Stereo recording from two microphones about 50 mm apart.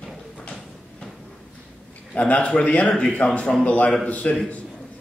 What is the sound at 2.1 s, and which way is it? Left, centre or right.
A man's voice, left.